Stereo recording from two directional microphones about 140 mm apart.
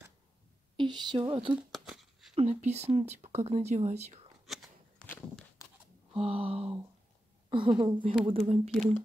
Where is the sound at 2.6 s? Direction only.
50° right (ahead or behind).